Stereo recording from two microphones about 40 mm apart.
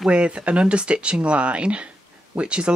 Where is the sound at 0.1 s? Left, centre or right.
Right.